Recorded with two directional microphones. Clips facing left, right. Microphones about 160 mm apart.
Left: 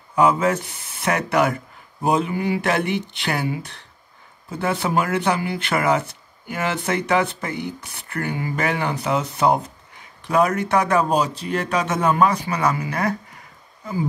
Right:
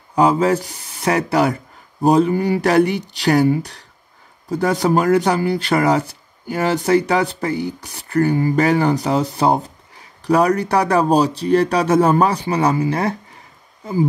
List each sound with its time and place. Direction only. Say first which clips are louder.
0.1 s speech: right 3 dB; 35° right (ahead or behind)